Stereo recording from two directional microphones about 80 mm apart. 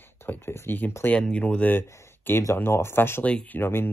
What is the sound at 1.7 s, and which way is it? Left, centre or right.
Speech, left.